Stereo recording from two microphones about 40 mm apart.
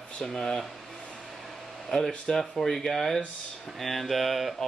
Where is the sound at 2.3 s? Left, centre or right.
Centre.